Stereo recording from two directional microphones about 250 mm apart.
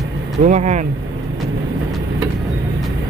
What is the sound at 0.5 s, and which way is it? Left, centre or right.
Speech, right.